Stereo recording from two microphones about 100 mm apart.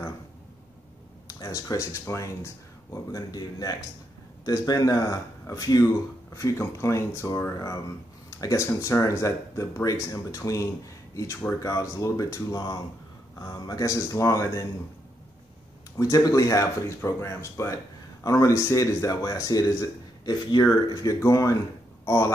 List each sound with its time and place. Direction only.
1.2 s speech: 35° left (ahead or behind)
16.0 s speech: 35° left (ahead or behind)